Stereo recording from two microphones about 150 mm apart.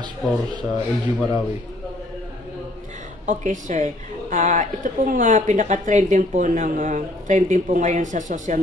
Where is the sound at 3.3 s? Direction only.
55° right (ahead or behind).